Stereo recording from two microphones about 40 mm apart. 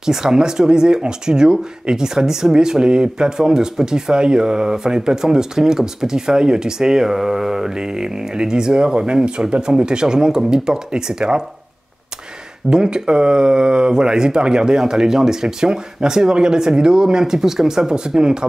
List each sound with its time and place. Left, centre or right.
0.0 s speech: centre
12.6 s speech: right